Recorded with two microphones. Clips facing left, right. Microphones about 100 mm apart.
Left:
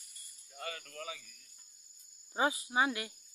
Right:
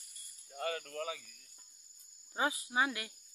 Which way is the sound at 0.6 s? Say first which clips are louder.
Right 6 dB; 45° right (ahead or behind).